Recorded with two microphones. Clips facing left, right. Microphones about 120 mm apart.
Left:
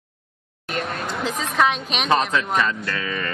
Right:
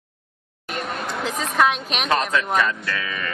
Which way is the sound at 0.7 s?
Centre (ahead or behind).